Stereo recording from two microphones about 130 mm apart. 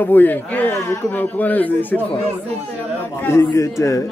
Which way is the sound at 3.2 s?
20° left (ahead or behind).